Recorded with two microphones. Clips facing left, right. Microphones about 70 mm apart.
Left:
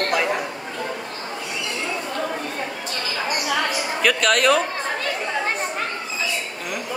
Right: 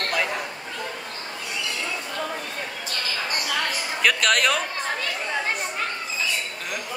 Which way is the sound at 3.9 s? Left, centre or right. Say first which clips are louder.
Left 2 dB; centre.